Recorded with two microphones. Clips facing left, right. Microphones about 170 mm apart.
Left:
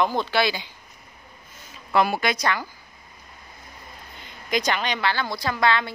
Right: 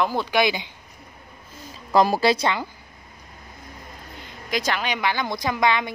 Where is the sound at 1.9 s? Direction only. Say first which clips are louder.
Right 4 dB; 35° right (ahead or behind).